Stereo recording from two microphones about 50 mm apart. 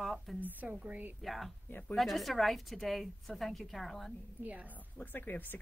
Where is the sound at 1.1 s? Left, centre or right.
Centre.